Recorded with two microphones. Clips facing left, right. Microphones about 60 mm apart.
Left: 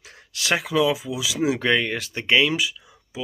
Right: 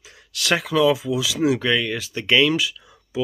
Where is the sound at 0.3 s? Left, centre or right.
Left.